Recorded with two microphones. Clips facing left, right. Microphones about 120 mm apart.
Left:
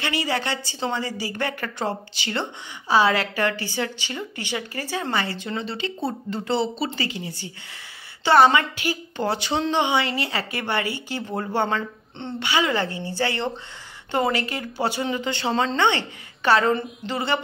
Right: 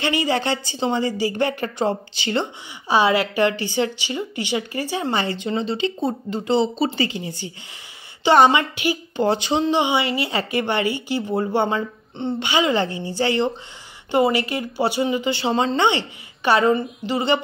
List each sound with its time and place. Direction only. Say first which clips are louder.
0.0 s a woman's voice: right 4 dB; 20° right (ahead or behind)